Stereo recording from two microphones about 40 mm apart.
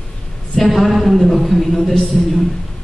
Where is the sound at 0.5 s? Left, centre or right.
Centre.